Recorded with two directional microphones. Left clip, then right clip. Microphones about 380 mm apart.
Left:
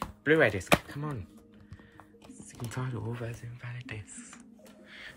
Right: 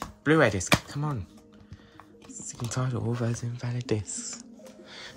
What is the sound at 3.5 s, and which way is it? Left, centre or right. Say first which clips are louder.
Speech: right 12 dB; centre.